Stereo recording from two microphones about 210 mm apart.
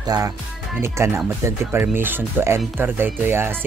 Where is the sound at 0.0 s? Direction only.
20° right (ahead or behind).